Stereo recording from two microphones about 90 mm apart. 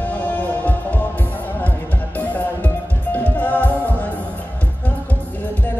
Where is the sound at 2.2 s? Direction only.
20° left (ahead or behind).